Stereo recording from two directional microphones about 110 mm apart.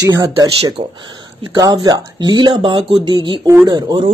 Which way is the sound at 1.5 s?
40° right (ahead or behind).